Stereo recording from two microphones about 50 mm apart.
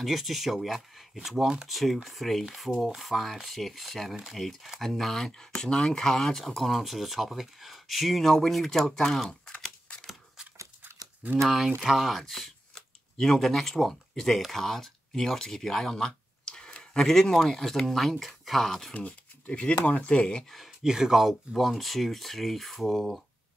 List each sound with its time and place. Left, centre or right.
0.0 s speech: centre
11.4 s speech: centre
18.9 s speech: left
20.8 s speech: centre